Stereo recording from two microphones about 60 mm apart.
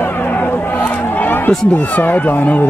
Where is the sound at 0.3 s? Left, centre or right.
Left.